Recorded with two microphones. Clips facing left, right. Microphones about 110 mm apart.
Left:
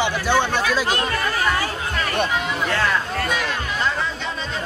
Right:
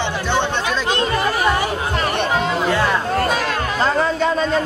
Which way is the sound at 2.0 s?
35° right (ahead or behind).